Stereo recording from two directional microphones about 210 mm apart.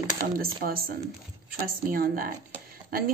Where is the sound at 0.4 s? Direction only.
45° right (ahead or behind).